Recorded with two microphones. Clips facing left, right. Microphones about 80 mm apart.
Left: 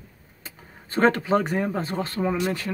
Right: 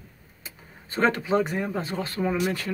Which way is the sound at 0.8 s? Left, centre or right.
Left.